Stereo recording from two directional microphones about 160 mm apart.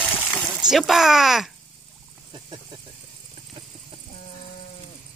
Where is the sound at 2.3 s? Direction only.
30° right (ahead or behind).